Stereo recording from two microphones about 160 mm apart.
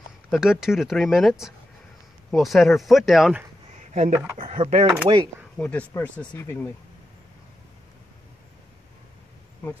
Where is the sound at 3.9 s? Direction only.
45° right (ahead or behind).